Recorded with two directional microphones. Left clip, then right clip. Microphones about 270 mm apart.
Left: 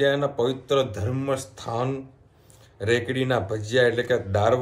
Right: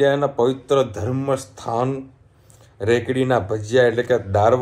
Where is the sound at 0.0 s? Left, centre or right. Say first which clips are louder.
Right 5 dB; centre.